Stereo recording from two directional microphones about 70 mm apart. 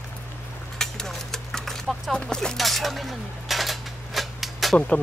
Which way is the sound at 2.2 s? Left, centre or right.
Centre.